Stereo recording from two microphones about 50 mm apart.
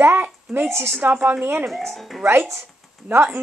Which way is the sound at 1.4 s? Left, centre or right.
Right.